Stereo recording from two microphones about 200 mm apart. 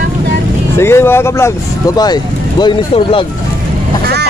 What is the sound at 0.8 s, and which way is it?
Speech, 10° left (ahead or behind).